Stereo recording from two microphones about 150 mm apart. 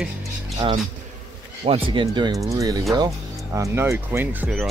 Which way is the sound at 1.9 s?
30° right (ahead or behind).